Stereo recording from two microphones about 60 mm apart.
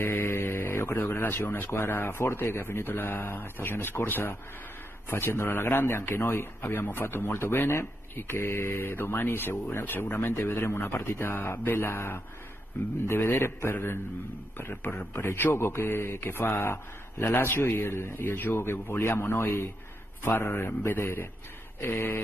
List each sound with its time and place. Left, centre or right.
0.0 s a man's voice: left